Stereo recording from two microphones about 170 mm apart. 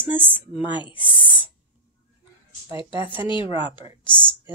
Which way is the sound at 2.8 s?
30° left (ahead or behind).